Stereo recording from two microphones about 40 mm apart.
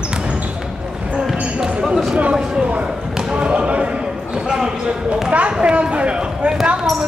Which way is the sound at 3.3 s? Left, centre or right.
Right.